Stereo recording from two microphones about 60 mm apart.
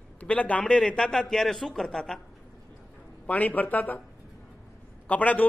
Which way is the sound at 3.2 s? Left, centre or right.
Left.